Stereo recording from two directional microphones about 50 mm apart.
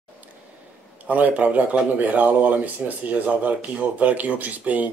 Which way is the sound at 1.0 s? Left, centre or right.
Right.